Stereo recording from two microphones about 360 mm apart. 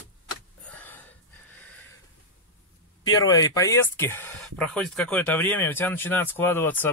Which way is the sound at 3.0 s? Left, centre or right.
Centre.